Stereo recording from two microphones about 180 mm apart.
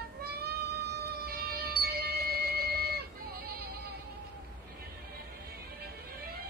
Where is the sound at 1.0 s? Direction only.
60° right (ahead or behind).